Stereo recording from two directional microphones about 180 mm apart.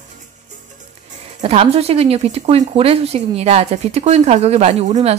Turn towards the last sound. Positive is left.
turn(degrees=-35)  # may be behind; listen again after turning